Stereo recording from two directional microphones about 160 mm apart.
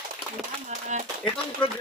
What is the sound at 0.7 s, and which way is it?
Speech, 50° right (ahead or behind).